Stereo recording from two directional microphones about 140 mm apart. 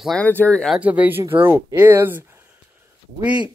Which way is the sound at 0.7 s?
10° right (ahead or behind).